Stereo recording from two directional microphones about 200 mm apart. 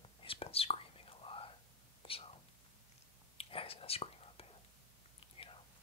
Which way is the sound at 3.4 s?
30° left (ahead or behind).